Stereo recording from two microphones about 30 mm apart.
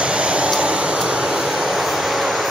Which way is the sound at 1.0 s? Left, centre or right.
Right.